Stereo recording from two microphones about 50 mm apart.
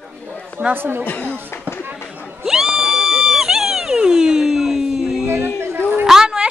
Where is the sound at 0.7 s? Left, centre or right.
Right.